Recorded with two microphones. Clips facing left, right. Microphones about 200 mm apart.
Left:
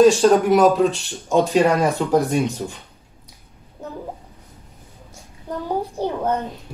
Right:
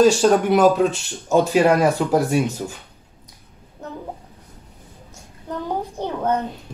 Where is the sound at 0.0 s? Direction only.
Centre (ahead or behind).